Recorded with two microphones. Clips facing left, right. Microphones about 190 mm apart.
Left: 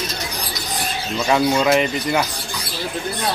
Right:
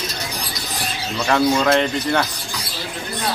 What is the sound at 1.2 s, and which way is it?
Speech, 10° left (ahead or behind).